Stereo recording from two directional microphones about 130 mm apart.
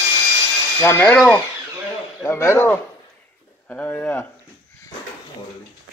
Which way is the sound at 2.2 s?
20° left (ahead or behind).